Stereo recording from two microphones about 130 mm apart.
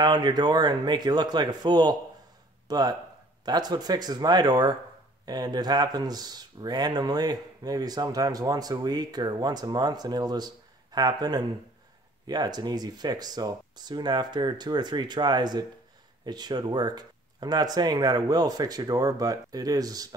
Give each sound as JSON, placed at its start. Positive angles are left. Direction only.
{"t": 0.0, "sound": "speech", "side_deg": -35}